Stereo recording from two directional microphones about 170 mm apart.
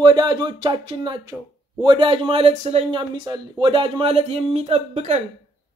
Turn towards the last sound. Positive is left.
turn(degrees=-40)  # may be behind; listen again after turning